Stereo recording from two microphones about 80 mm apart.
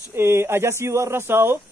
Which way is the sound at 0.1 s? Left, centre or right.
Right.